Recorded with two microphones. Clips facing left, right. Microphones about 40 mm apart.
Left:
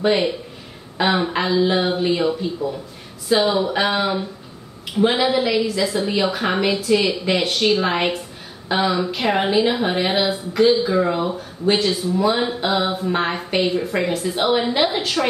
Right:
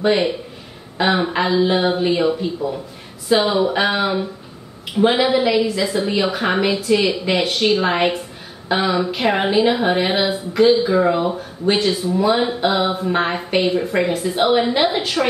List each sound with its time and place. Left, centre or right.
0.9 s speech: centre
2.2 s a woman's voice: centre